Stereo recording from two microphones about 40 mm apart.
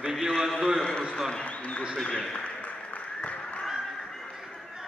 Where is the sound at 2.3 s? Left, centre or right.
Left.